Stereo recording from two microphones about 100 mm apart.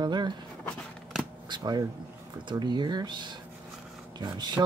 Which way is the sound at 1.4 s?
45° right (ahead or behind).